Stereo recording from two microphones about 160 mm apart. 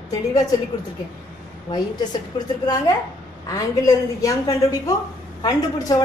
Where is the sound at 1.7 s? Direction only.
25° left (ahead or behind).